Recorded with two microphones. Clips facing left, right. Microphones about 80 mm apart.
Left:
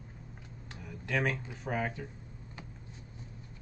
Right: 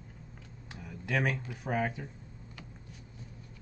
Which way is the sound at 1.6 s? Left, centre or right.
Centre.